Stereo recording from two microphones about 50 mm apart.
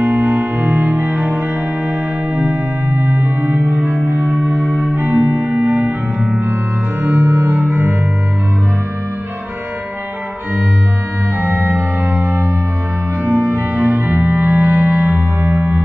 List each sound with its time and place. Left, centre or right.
0.0 s music: right
2.9 s organ: right
4.1 s music: right
7.0 s music: right
11.4 s organ: right
13.2 s music: right